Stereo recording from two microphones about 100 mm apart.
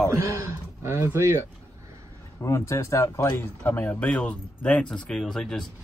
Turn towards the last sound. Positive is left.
turn(degrees=5)  # may be behind; listen again after turning